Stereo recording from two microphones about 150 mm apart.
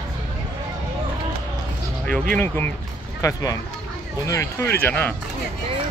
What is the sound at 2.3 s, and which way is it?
Speech, 15° left (ahead or behind).